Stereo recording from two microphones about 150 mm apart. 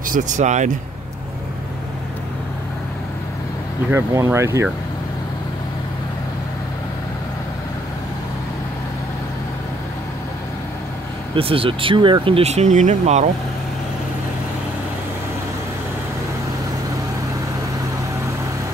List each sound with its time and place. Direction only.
0.1 s speech: 55° right (ahead or behind)
3.9 s speech: 20° right (ahead or behind)
11.3 s speech: 40° right (ahead or behind)